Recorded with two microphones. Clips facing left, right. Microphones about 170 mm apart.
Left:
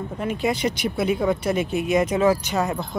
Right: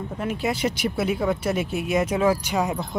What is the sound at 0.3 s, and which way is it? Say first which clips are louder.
Speech: left 2 dB; 5° right (ahead or behind).